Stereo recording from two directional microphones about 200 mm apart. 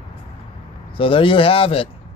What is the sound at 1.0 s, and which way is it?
Speech, 25° left (ahead or behind).